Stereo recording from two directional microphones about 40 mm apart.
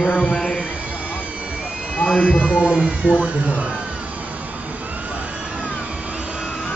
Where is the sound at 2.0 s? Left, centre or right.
Left.